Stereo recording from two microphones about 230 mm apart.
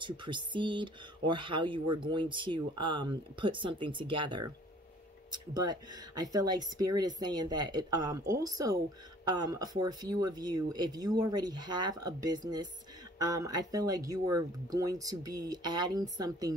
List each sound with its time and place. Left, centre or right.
0.0 s speech: right